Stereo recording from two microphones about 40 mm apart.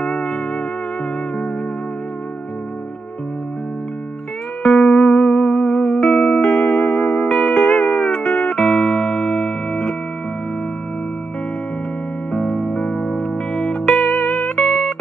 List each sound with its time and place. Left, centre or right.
0.0 s music: centre
4.7 s music: centre
5.5 s music: centre
7.2 s music: left
8.1 s music: centre
8.5 s music: centre
9.2 s music: left
9.7 s music: centre
12.3 s music: left
13.8 s music: centre